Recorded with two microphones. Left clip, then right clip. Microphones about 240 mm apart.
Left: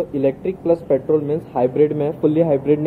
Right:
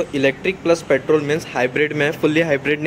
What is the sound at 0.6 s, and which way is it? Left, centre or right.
Speech, right.